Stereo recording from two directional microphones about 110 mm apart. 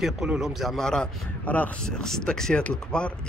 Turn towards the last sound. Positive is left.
turn(degrees=10)  # may be behind; listen again after turning